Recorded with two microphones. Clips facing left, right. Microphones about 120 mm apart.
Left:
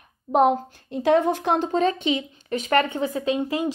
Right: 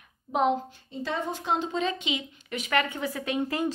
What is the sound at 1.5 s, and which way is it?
Speech, 45° left (ahead or behind).